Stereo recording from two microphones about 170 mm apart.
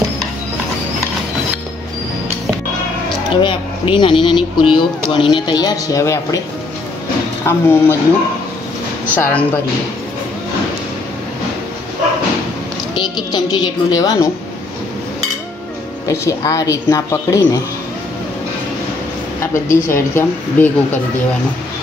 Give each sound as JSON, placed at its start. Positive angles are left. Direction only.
{"t": 3.3, "sound": "speech", "side_deg": 30}
{"t": 7.4, "sound": "speech", "side_deg": 15}
{"t": 9.1, "sound": "speech", "side_deg": 10}
{"t": 12.9, "sound": "speech", "side_deg": 25}
{"t": 16.1, "sound": "speech", "side_deg": 20}
{"t": 19.4, "sound": "speech", "side_deg": 15}